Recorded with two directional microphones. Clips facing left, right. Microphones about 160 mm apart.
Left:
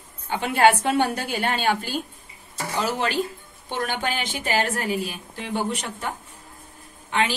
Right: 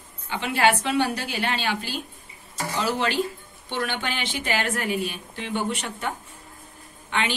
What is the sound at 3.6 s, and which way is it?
A woman's voice, 40° left (ahead or behind).